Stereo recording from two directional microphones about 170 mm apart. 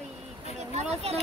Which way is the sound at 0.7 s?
40° right (ahead or behind).